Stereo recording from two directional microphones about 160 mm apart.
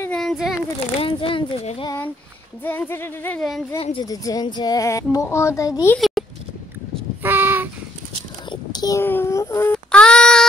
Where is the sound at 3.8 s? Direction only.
35° left (ahead or behind).